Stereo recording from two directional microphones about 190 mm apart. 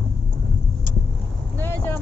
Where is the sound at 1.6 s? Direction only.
10° left (ahead or behind).